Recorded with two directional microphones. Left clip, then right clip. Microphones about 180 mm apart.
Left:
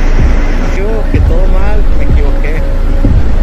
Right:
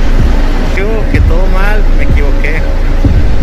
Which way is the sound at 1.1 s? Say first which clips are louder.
Right 1 dB; centre (ahead or behind).